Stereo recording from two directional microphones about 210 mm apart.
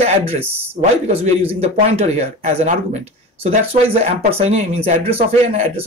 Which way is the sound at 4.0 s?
30° right (ahead or behind).